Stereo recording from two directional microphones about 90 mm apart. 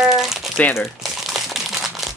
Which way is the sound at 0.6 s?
15° left (ahead or behind).